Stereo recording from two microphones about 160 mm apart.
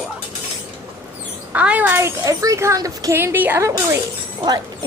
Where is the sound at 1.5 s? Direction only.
10° right (ahead or behind).